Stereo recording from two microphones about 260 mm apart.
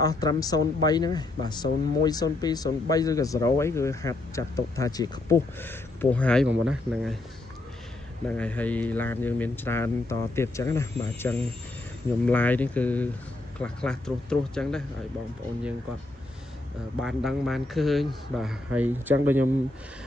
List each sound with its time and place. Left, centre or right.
0.0 s a man's voice: centre
8.3 s a man's voice: centre
17.0 s a man's voice: centre